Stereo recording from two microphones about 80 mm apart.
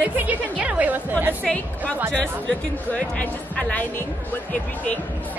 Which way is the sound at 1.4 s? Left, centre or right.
Centre.